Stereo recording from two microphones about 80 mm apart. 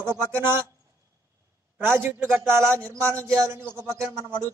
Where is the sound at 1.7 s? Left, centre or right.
Right.